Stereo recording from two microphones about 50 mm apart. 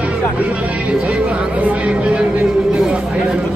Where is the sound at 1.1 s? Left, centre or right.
Right.